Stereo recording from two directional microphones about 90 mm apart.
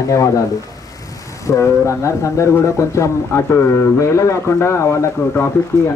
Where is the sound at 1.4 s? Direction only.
30° left (ahead or behind).